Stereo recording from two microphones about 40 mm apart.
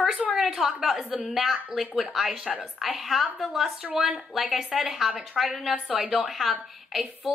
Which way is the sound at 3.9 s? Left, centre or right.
Centre.